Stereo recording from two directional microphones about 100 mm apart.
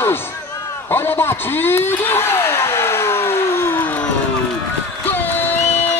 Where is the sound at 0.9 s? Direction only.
25° left (ahead or behind).